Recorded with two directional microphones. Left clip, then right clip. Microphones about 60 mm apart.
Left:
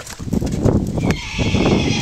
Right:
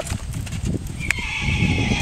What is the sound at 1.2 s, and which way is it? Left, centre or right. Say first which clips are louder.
Horse: left 3 dB; centre.